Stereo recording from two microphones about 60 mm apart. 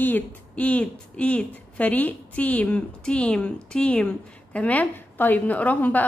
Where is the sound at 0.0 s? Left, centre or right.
Left.